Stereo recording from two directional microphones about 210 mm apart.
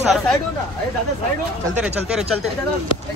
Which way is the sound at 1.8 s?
5° right (ahead or behind).